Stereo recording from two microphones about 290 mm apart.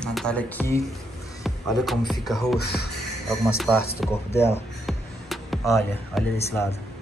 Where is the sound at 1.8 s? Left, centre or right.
Centre.